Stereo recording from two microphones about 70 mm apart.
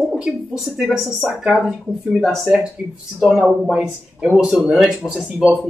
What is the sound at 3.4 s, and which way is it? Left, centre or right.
Speech, centre.